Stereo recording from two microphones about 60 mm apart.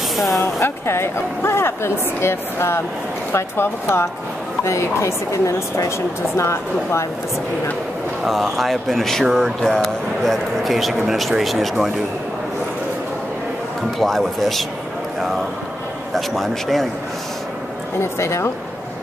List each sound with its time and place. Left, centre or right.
0.3 s speech: left
8.3 s speech: centre
13.9 s speech: centre
16.1 s speech: centre
18.0 s speech: left